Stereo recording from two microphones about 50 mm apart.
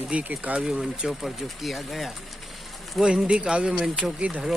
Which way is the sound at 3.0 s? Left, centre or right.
Centre.